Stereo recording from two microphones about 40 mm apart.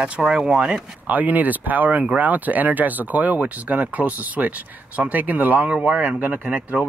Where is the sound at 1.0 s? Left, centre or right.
Right.